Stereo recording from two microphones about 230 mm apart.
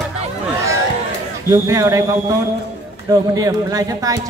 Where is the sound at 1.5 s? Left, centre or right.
Centre.